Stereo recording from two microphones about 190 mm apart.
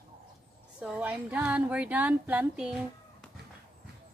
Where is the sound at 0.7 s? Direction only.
5° right (ahead or behind).